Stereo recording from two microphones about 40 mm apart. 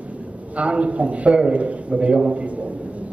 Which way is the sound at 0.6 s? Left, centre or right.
Right.